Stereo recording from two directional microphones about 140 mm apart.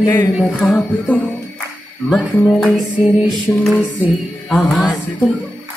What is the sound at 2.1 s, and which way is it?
Music, centre (ahead or behind).